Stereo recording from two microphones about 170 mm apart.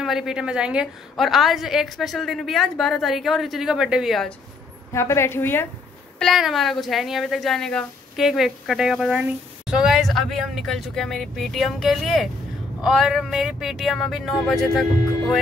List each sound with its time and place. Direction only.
0.0 s a woman's voice: centre (ahead or behind)
4.9 s a woman's voice: 15° left (ahead or behind)
6.1 s a woman's voice: centre (ahead or behind)